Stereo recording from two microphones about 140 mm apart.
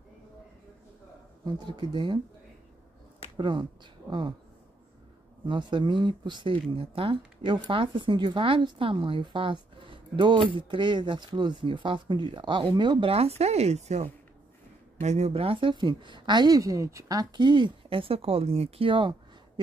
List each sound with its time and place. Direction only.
1.4 s speech: 30° right (ahead or behind)
3.3 s speech: 35° right (ahead or behind)
5.5 s speech: 35° right (ahead or behind)